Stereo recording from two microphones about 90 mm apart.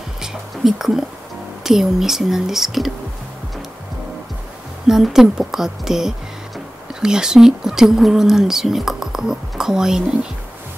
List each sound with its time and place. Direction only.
0.2 s whispering: 5° right (ahead or behind)
1.6 s speech: 5° right (ahead or behind)
4.8 s speech: 5° right (ahead or behind)